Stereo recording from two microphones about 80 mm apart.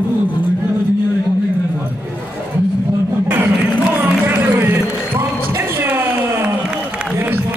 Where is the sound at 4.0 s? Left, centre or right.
Right.